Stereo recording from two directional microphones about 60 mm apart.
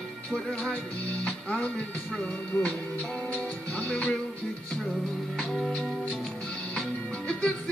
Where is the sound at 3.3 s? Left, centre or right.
Left.